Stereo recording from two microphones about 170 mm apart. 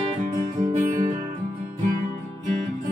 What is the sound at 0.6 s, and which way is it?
Music, 50° right (ahead or behind).